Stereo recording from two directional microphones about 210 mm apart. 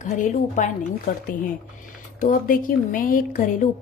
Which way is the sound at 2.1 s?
40° left (ahead or behind).